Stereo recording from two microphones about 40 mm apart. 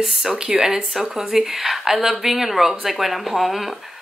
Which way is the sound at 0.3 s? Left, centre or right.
Centre.